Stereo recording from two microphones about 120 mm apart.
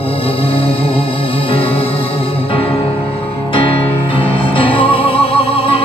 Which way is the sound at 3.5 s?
50° left (ahead or behind).